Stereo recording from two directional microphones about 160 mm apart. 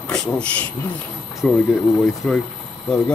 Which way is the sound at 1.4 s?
5° left (ahead or behind).